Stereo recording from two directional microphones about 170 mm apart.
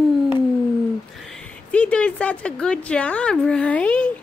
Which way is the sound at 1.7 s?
5° left (ahead or behind).